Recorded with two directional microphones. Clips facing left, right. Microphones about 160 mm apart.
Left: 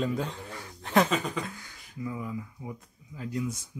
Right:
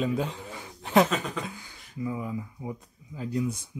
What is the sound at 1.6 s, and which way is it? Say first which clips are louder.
Speech: right 4 dB; 25° right (ahead or behind).